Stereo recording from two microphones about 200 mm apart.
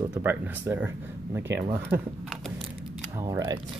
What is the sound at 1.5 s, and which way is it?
Speech, 60° right (ahead or behind).